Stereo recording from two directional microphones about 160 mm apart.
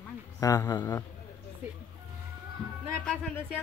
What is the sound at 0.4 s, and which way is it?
Speech, 20° left (ahead or behind).